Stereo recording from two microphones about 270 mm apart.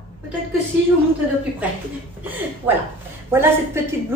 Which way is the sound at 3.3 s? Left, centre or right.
Centre.